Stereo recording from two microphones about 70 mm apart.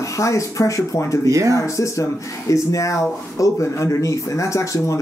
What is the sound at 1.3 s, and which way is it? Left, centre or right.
Speech, right.